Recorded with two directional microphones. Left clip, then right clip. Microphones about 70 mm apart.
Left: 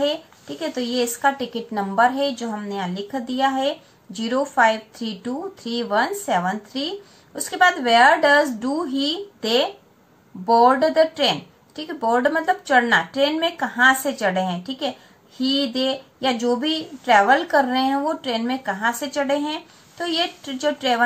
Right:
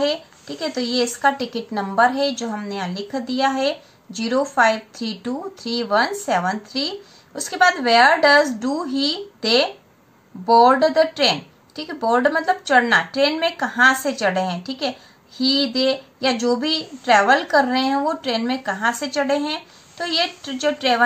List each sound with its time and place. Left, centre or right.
0.0 s a woman's voice: right
2.3 s a woman's voice: right